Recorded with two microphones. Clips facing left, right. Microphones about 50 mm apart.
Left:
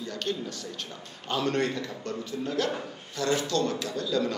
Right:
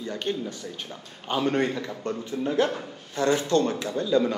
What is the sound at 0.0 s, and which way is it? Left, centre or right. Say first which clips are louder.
A man's voice: right 3 dB; right.